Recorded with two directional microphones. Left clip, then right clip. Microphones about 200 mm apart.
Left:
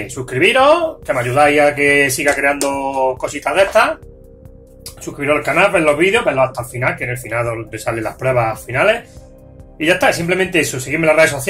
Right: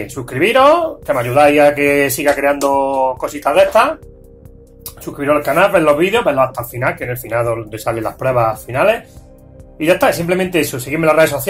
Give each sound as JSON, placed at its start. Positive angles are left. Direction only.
{"t": 0.0, "sound": "speech", "side_deg": -20}